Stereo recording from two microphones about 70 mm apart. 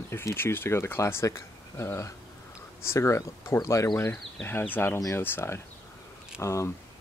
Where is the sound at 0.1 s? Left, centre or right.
Left.